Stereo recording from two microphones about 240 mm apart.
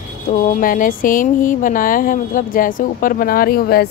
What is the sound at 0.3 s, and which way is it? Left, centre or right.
Music, left.